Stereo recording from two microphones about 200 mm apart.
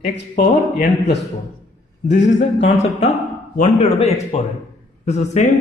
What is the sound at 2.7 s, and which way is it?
A man's voice, 35° left (ahead or behind).